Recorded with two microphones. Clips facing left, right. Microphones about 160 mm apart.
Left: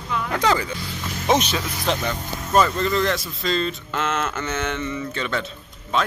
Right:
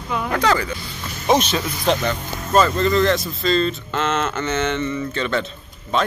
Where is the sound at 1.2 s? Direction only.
15° right (ahead or behind).